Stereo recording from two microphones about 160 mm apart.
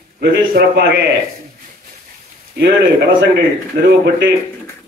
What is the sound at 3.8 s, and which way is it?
Speech, 90° right.